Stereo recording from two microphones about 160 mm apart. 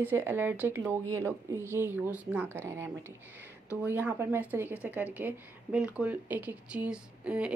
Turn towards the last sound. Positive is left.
turn(degrees=-5)  # may be behind; listen again after turning